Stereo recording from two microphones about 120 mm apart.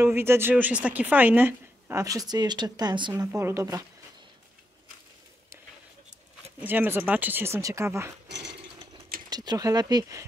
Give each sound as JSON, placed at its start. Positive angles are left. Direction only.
{"t": 0.0, "sound": "speech", "side_deg": -20}
{"t": 2.0, "sound": "speech", "side_deg": -30}
{"t": 3.3, "sound": "speech", "side_deg": -25}
{"t": 6.6, "sound": "speech", "side_deg": -15}
{"t": 8.9, "sound": "a sound", "side_deg": -35}